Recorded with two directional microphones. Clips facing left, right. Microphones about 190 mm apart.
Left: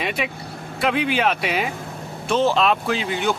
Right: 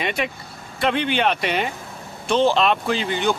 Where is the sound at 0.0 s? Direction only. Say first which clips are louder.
Right 1 dB; centre (ahead or behind).